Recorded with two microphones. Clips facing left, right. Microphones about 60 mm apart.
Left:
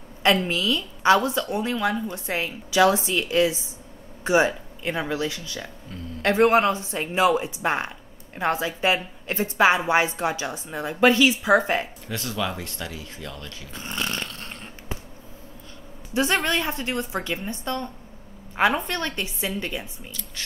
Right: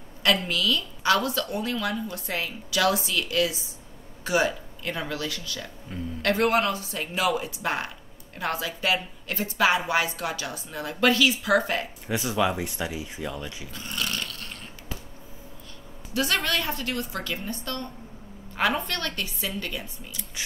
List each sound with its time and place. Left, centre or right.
0.2 s a woman's voice: left
5.9 s speech: centre
6.2 s a woman's voice: left
12.1 s speech: centre
13.7 s snoring: left
16.1 s a woman's voice: left
20.1 s speech: centre